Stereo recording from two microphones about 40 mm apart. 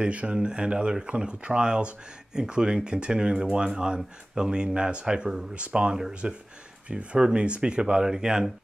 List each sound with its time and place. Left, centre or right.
0.0 s speech: right
5.9 s speech: centre
6.9 s speech: right